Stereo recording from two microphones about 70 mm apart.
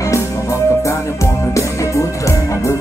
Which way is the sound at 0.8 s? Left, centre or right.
Left.